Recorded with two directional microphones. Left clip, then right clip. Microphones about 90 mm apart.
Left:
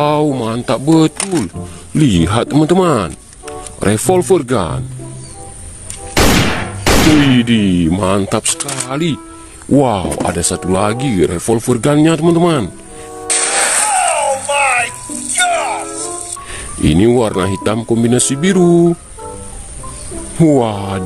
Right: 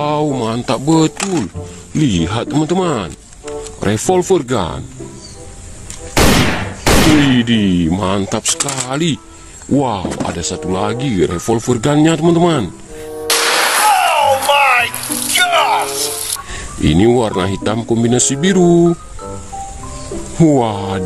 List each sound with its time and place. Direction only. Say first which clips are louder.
0.3 s speech: left 1 dB; 15° left (ahead or behind)
2.0 s a man's voice: left 3 dB; 45° left (ahead or behind)
3.8 s speech: left 2 dB; 25° left (ahead or behind)
6.8 s a sound: even; centre (ahead or behind)
7.2 s speech: left 1 dB; 20° left (ahead or behind)
8.7 s speech: even; 10° left (ahead or behind)
9.8 s speech: left 4 dB; 35° left (ahead or behind)
11.1 s speech: left 1 dB; 25° left (ahead or behind)
13.3 s a sound: right 3 dB; 5° right (ahead or behind)
16.8 s speech: left 1 dB; 15° left (ahead or behind)
20.3 s speech: left 1 dB; 15° left (ahead or behind)